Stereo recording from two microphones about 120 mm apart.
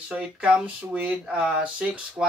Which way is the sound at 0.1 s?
10° right (ahead or behind).